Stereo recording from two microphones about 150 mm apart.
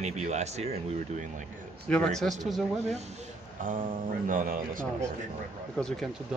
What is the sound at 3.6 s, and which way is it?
Speech, 65° right (ahead or behind).